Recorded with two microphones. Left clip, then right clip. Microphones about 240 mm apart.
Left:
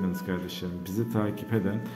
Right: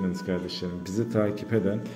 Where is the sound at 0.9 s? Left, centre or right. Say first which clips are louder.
Right 4 dB; centre.